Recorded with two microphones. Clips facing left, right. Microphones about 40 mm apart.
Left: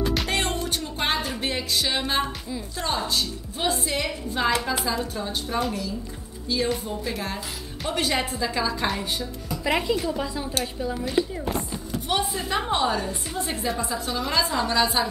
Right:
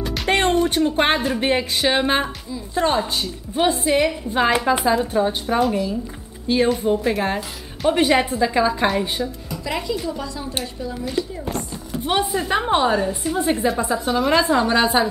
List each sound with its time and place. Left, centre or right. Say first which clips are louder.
0.3 s music: right 8 dB; right
1.1 s music: right 6 dB; centre
1.4 s a woman's voice: right 7 dB; right
9.5 s speech: left 6 dB; centre
11.4 s a sound: right 1 dB; centre
12.0 s a woman's voice: right 6 dB; right